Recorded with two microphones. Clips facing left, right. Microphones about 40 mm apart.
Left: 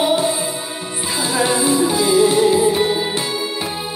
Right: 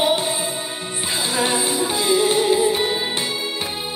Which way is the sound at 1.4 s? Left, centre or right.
Centre.